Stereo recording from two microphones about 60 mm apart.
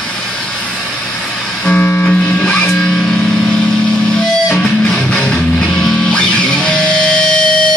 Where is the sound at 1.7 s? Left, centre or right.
Left.